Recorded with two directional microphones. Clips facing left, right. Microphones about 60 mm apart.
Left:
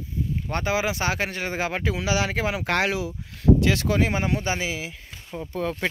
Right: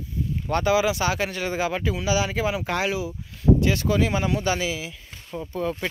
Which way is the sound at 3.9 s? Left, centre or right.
Left.